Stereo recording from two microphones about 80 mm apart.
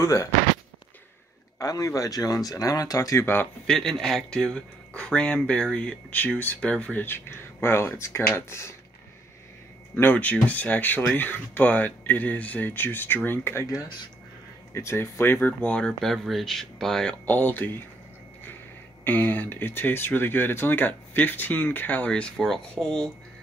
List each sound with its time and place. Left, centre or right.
0.0 s speech: left
1.6 s speech: left
3.6 s speech: centre; by 8.7 s left
9.9 s speech: left
14.7 s speech: left; by 17.2 s centre
17.3 s speech: left
19.0 s speech: left; by 23.0 s centre